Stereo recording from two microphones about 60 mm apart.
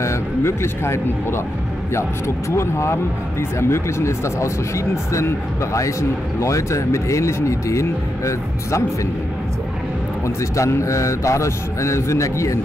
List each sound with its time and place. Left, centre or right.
0.0 s speech: left
10.2 s a man's voice: left